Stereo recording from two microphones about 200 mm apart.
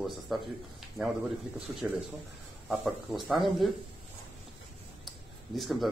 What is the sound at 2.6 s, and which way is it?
Speech, centre (ahead or behind).